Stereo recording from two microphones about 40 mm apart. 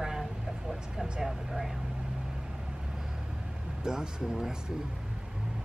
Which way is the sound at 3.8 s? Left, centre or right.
Centre.